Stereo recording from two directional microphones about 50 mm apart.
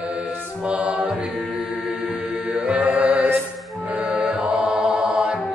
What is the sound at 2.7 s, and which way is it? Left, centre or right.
Music, right.